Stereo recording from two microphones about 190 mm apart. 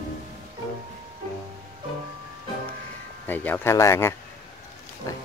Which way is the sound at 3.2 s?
10° left (ahead or behind).